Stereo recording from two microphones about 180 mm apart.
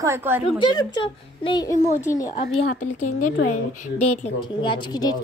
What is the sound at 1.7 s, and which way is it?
Speech, 40° left (ahead or behind).